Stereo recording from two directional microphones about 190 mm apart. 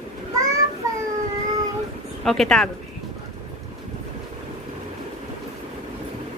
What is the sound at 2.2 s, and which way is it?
Speech, centre (ahead or behind).